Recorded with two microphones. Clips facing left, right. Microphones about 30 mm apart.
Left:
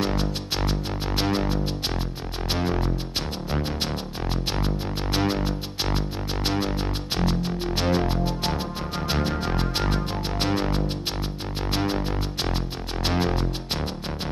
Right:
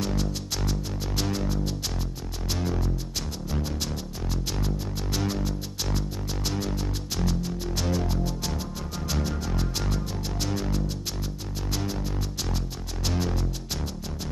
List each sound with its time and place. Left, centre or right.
0.0 s music: left